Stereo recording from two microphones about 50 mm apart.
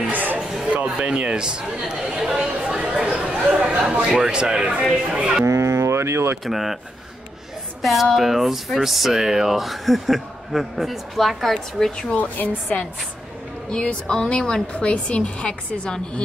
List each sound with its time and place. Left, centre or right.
0.1 s music: right
0.7 s speech: right
5.4 s speech: right
6.4 s speech: centre
7.8 s speech: centre
12.0 s a woman's voice: left
13.7 s a woman's voice: left